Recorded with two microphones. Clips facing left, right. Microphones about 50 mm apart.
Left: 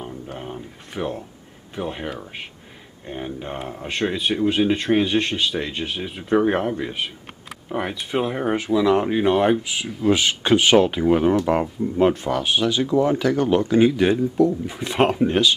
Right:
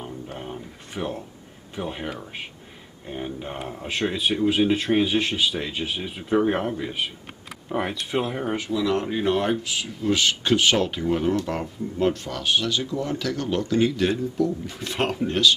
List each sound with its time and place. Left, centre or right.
0.0 s a sound: centre
1.8 s speech: centre
8.7 s speech: centre